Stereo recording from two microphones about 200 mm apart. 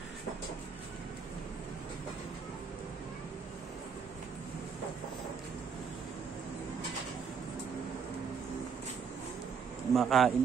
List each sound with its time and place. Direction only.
9.9 s speech: centre (ahead or behind)